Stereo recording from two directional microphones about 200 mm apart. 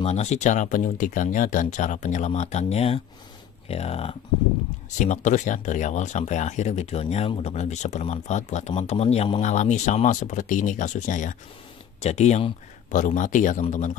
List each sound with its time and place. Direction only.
0.0 s speech: 35° left (ahead or behind)